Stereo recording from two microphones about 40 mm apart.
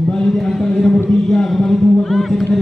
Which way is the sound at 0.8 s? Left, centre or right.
Centre.